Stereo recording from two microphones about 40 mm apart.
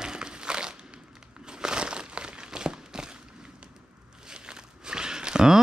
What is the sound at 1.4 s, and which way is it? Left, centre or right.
Crumpling, centre.